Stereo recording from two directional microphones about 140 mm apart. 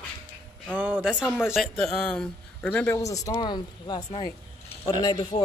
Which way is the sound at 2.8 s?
20° left (ahead or behind).